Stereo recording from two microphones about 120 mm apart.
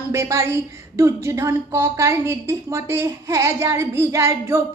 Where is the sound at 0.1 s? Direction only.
25° right (ahead or behind).